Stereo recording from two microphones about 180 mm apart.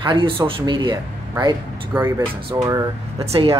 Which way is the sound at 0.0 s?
25° right (ahead or behind).